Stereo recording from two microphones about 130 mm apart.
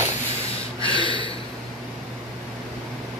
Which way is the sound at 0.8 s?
40° left (ahead or behind).